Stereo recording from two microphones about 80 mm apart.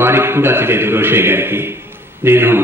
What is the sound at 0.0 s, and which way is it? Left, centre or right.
A man's voice, right.